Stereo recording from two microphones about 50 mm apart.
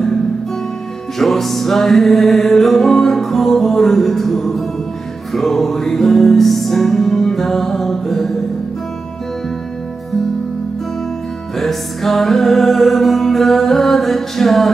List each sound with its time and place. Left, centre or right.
1.1 s music: centre
11.5 s music: centre